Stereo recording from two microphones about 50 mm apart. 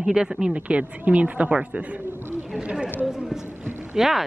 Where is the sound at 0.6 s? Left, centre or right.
Right.